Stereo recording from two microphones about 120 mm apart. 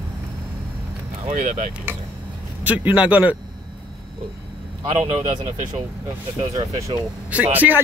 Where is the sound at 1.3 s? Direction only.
75° right (ahead or behind).